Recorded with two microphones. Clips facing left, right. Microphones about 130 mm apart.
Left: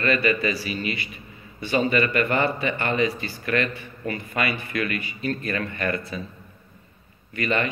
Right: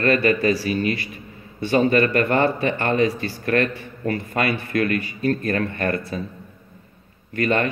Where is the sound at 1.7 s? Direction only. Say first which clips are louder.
Right 4 dB; 40° right (ahead or behind).